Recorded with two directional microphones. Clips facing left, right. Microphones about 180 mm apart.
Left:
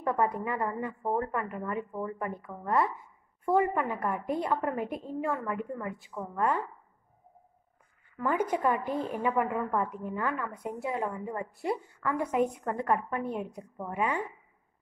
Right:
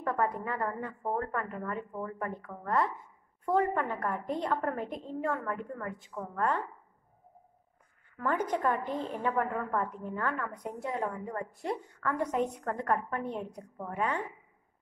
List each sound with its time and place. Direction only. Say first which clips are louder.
0.0 s a woman's voice: left 2 dB; 15° left (ahead or behind)
8.2 s a woman's voice: left 2 dB; 10° left (ahead or behind)